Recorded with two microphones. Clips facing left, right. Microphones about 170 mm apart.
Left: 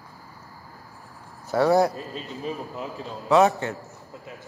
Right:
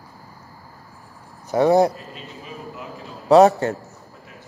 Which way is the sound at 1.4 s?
20° right (ahead or behind).